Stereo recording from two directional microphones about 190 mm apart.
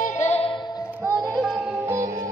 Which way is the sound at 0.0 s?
40° left (ahead or behind).